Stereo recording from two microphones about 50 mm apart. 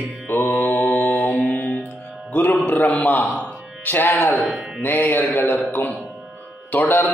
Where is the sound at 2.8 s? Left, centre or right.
Left.